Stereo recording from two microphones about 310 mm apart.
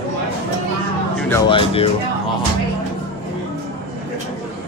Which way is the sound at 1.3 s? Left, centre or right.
Centre.